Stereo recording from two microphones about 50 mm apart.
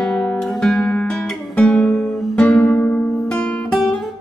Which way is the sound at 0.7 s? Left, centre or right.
Left.